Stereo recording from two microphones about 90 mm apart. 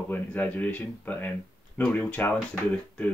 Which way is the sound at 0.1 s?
20° left (ahead or behind).